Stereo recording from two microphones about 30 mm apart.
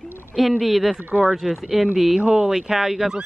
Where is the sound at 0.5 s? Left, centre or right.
Centre.